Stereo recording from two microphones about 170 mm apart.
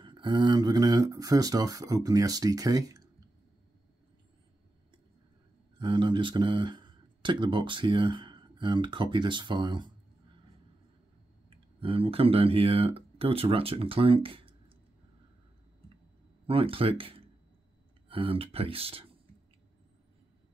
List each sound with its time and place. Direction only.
0.0 s speech: 30° right (ahead or behind)
5.8 s speech: 30° right (ahead or behind)
11.5 s speech: 35° right (ahead or behind)
16.4 s speech: 35° right (ahead or behind)